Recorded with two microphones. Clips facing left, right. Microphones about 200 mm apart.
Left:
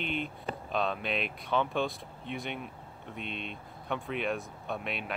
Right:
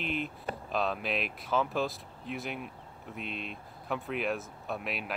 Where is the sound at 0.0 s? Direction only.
Centre (ahead or behind).